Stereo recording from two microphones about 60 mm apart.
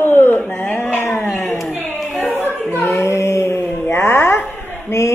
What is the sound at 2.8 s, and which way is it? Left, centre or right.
Speech, left.